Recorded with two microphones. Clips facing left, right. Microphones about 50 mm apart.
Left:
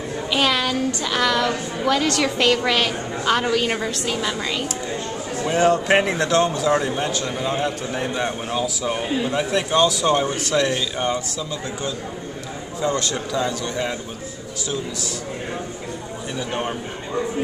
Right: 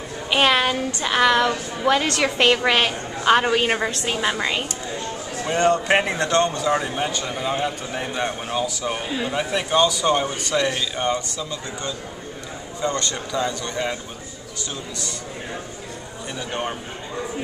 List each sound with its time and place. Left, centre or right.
0.3 s a woman's voice: right
5.4 s speech: centre
16.3 s speech: centre